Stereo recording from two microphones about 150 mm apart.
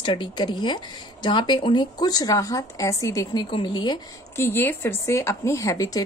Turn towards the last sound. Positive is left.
turn(degrees=20)  # may be behind; listen again after turning